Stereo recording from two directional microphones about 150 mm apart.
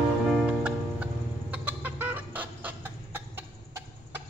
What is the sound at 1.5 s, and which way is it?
Chicken, 10° right (ahead or behind).